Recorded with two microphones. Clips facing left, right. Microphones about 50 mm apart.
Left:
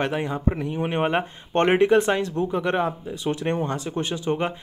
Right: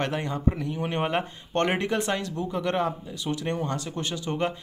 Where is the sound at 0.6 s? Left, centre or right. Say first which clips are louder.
Left 4 dB; left.